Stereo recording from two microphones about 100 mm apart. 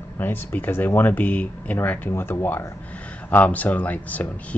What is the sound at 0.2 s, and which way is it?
Speech, 20° left (ahead or behind).